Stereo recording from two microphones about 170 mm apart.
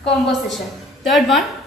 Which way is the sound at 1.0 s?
Centre (ahead or behind).